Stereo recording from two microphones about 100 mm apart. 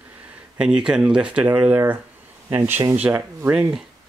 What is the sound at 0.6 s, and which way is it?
Speech, 10° right (ahead or behind).